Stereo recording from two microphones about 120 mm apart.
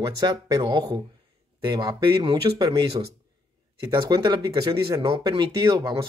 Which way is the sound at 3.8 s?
35° right (ahead or behind).